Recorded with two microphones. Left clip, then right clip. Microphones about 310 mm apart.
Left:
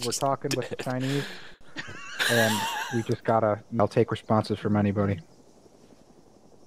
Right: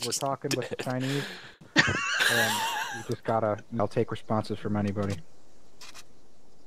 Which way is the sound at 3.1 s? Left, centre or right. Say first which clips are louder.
Left 3 dB; centre.